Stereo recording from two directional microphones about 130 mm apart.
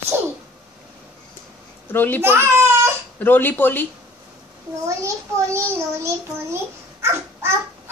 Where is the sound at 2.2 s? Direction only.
20° right (ahead or behind).